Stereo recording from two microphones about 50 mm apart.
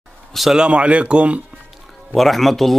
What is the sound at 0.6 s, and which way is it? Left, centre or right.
Speech, right.